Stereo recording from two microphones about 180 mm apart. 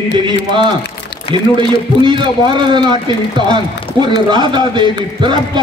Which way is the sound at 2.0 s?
25° right (ahead or behind).